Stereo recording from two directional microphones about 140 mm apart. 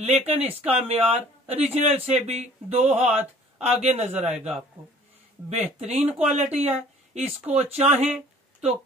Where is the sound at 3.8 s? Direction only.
50° right (ahead or behind).